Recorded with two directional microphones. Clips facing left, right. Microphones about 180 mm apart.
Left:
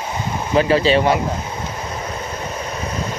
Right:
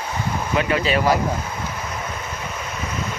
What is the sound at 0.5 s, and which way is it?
Speech, 30° left (ahead or behind).